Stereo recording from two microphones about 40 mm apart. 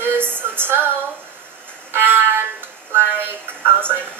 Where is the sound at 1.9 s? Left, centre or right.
Right.